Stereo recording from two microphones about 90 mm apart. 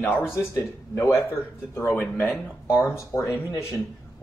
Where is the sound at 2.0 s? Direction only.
15° left (ahead or behind).